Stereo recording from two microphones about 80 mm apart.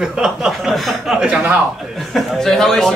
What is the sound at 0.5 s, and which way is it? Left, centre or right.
Chuckle, centre.